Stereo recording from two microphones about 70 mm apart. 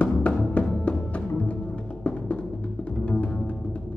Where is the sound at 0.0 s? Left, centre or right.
Centre.